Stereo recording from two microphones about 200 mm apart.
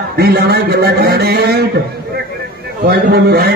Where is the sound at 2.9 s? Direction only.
50° right (ahead or behind).